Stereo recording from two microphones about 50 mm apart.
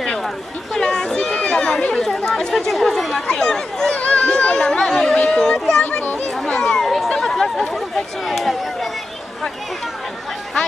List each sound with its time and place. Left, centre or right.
0.7 s chatter: centre
2.7 s speech: centre
3.9 s a sound: left
5.9 s children playing: left
6.3 s children playing: centre
7.1 s chatter: centre